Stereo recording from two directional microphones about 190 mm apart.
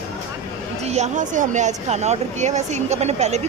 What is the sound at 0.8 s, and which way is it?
Speech, 35° right (ahead or behind).